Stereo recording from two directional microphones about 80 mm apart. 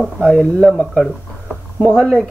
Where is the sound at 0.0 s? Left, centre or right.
Centre.